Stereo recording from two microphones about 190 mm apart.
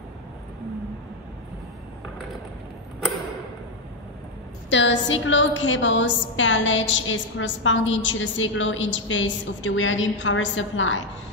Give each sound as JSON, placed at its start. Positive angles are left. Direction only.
{"t": 4.6, "sound": "a woman's voice", "side_deg": 70}